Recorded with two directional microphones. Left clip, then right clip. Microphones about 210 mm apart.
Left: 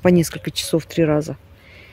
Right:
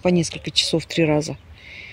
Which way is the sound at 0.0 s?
35° left (ahead or behind).